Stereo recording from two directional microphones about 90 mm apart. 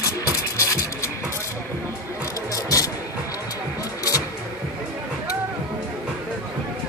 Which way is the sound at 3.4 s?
40° left (ahead or behind).